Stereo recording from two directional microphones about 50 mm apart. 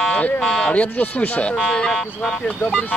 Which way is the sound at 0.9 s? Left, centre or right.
Left.